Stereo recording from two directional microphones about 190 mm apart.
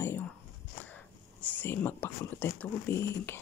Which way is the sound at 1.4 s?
10° left (ahead or behind).